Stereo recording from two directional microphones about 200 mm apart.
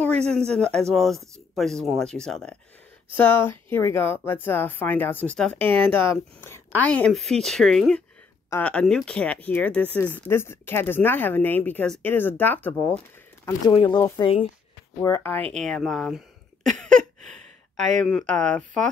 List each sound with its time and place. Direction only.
0.5 s speech: 5° left (ahead or behind)
13.7 s speech: 20° left (ahead or behind); by 16.3 s centre (ahead or behind)
17.2 s gasp: 35° right (ahead or behind)
18.0 s speech: 5° left (ahead or behind)